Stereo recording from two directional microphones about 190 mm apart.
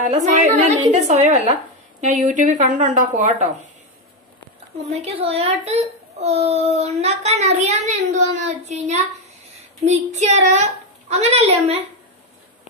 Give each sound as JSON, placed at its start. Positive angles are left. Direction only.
{"t": 0.1, "sound": "a child's voice", "side_deg": -40}
{"t": 4.9, "sound": "a child's voice", "side_deg": -30}
{"t": 10.1, "sound": "a child's voice", "side_deg": -35}